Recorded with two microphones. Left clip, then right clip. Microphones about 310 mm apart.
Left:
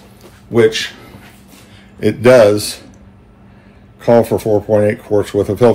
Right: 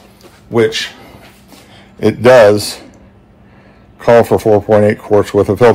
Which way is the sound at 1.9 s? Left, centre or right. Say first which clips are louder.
Right 2 dB; right.